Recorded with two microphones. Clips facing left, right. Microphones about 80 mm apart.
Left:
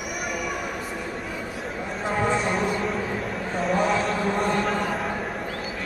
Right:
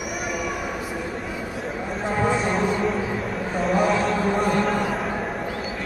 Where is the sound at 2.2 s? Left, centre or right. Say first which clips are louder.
Right 2 dB; centre.